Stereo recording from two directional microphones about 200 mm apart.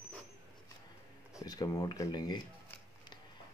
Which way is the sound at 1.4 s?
20° left (ahead or behind).